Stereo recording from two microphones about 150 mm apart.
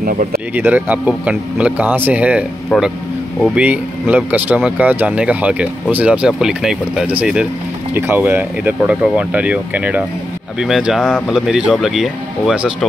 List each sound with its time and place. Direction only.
0.0 s speech: 70° right (ahead or behind)
0.6 s speech: 10° right (ahead or behind)
2.7 s speech: 5° left (ahead or behind)
3.5 s speech: 10° right (ahead or behind)